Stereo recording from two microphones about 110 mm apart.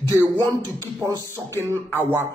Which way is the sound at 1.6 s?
20° right (ahead or behind).